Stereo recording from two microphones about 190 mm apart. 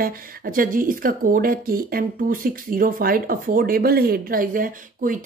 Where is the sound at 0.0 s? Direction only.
45° right (ahead or behind).